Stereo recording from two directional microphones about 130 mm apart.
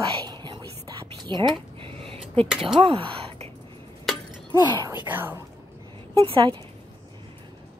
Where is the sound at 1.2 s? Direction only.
35° right (ahead or behind).